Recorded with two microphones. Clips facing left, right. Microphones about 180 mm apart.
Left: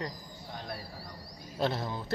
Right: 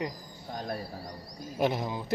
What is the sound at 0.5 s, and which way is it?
Speech, 40° right (ahead or behind).